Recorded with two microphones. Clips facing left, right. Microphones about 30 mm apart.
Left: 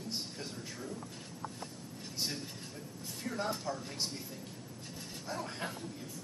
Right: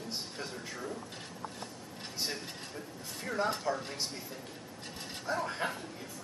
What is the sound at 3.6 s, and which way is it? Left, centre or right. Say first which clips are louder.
Speech: right 5 dB; right.